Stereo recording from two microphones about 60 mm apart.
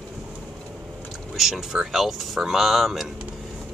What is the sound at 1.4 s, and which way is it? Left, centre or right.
Speech, centre.